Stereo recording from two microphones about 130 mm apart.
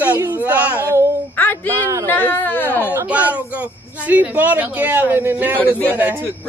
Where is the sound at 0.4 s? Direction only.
10° right (ahead or behind).